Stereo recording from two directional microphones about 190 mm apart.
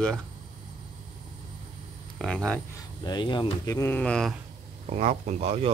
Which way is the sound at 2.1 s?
5° left (ahead or behind).